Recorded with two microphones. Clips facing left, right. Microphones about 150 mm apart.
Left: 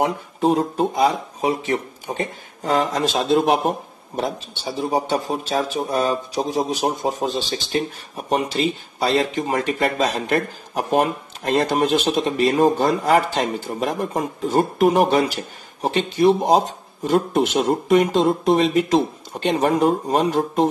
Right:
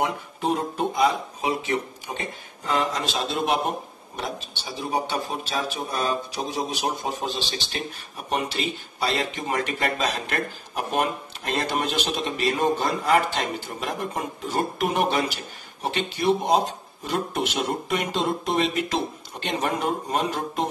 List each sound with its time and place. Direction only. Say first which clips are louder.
0.0 s speech: left 6 dB; 35° left (ahead or behind)
4.6 s speech: left 6 dB; 40° left (ahead or behind)
8.3 s speech: left 6 dB; 35° left (ahead or behind)